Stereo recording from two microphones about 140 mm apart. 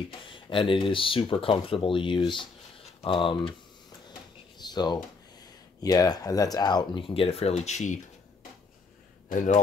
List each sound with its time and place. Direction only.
0.2 s speech: 35° left (ahead or behind)
4.1 s drawer open or close: 30° left (ahead or behind)
5.8 s speech: 25° left (ahead or behind); by 8.0 s 55° left (ahead or behind)